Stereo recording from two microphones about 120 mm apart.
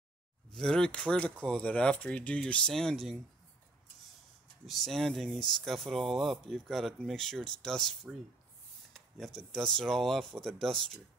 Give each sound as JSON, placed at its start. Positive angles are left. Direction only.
{"t": 0.5, "sound": "speech", "side_deg": 5}
{"t": 4.6, "sound": "speech", "side_deg": 0}